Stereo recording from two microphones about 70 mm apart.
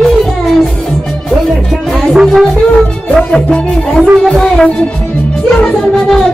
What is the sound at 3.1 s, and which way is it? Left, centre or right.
Music, centre.